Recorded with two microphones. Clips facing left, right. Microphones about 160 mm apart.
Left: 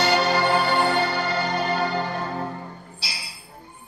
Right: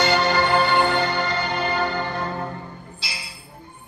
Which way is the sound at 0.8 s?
5° left (ahead or behind).